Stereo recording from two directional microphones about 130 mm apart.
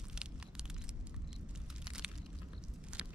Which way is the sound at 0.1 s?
5° right (ahead or behind).